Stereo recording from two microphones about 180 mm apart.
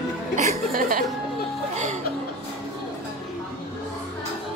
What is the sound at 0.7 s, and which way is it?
Speech, 50° right (ahead or behind).